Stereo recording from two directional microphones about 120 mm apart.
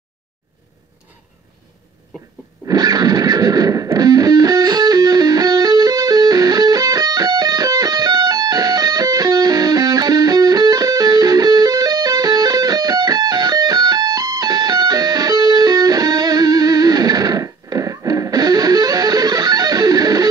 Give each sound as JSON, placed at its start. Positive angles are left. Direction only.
{"t": 2.6, "sound": "music", "side_deg": -35}